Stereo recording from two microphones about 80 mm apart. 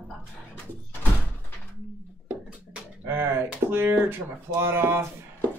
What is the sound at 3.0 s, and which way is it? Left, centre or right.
Speech, right.